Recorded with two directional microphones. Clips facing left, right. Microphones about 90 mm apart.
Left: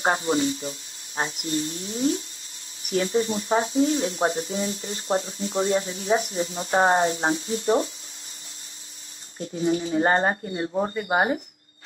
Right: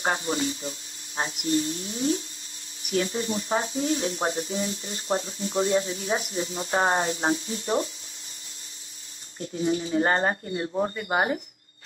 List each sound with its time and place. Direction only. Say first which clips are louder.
0.0 s speech: left 4 dB; 30° left (ahead or behind)
9.6 s speech: left 2 dB; 30° left (ahead or behind)